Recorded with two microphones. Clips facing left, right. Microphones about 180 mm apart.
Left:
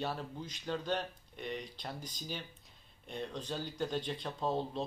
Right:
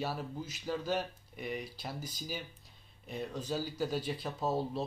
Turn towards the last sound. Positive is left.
turn(degrees=-5)  # may be behind; listen again after turning